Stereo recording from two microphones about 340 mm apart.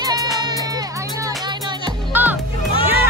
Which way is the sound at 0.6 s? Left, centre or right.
Centre.